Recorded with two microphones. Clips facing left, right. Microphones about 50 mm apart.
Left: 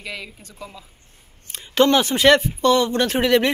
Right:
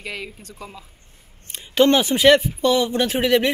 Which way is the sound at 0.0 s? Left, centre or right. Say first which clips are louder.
Right 1 dB; right.